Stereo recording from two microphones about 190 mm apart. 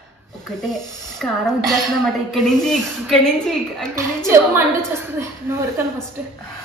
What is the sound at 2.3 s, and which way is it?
A woman's voice, centre (ahead or behind).